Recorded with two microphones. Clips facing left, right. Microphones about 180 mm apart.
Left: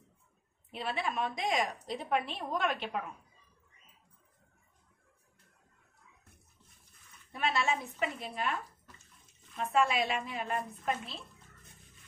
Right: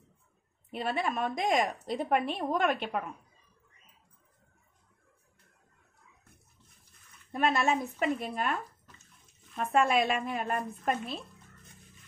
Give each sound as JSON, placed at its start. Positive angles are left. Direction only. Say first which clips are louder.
{"t": 0.7, "sound": "a woman's voice", "louder": "right 4 dB", "side_deg": -50}
{"t": 7.3, "sound": "a woman's voice", "louder": "right 5 dB", "side_deg": -50}
{"t": 9.6, "sound": "a woman's voice", "louder": "right 3 dB", "side_deg": -50}